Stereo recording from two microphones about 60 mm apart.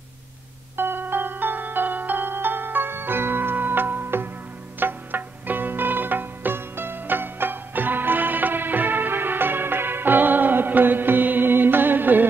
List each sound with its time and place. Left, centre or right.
0.7 s music: right